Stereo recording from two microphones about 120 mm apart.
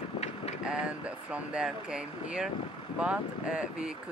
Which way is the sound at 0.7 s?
10° right (ahead or behind).